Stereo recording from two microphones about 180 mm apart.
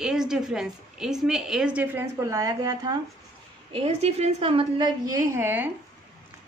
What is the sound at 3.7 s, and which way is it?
A woman's voice, 35° right (ahead or behind).